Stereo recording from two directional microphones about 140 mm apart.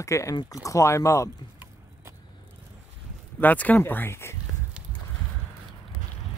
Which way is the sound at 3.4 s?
10° left (ahead or behind).